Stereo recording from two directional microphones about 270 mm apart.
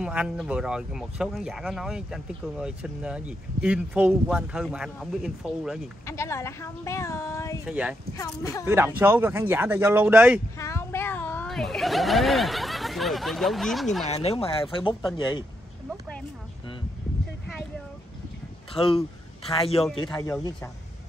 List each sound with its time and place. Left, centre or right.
0.0 s speech: centre
6.0 s speech: centre
7.6 s speech: centre
10.6 s a sound: centre
14.0 s speech: left
15.9 s a sound: centre
18.7 s speech: centre
19.8 s speech: centre
20.2 s speech: centre